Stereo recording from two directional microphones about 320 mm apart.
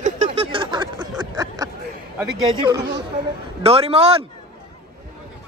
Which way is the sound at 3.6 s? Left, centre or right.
Centre.